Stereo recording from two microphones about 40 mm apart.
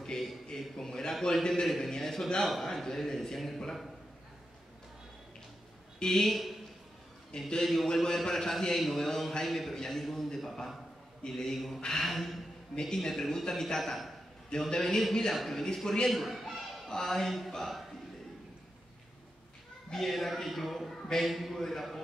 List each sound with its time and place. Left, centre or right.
0.0 s a sound: centre
0.6 s a man's voice: centre
5.9 s speech: centre
7.3 s a man's voice: centre
14.7 s a man's voice: centre
15.6 s a man's voice: centre
16.1 s a sound: centre
16.9 s a man's voice: centre
19.9 s speech: centre